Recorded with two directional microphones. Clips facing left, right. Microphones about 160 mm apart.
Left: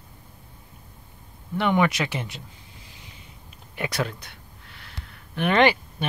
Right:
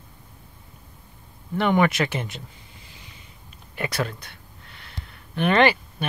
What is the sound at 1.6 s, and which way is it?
Speech, centre (ahead or behind).